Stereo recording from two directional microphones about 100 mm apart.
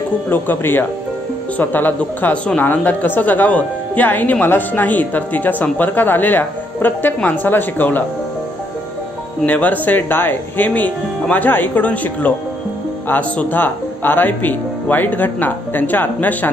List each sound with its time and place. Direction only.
0.3 s speech: 20° left (ahead or behind)
9.5 s speech: 15° left (ahead or behind)